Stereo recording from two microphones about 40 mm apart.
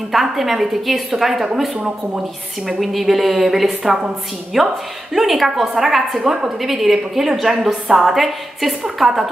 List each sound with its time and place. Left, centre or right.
0.1 s a woman's voice: centre
2.8 s a woman's voice: centre
6.1 s a woman's voice: centre
6.6 s a woman's voice: centre